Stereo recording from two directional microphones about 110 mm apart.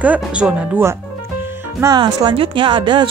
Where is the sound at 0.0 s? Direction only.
10° right (ahead or behind).